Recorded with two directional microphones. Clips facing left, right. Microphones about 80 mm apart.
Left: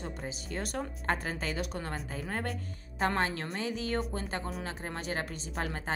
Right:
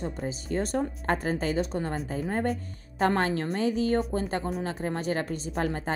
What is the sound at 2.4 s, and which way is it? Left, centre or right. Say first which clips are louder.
A woman's voice: right 8 dB; right.